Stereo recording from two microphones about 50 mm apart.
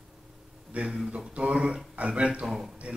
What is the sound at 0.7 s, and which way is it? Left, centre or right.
Speech, right.